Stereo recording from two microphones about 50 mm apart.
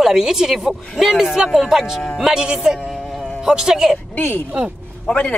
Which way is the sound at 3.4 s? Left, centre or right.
Centre.